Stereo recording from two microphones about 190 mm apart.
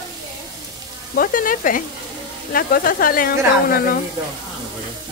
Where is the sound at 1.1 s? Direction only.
45° left (ahead or behind).